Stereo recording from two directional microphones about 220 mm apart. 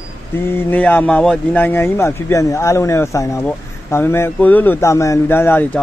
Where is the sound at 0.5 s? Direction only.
10° left (ahead or behind).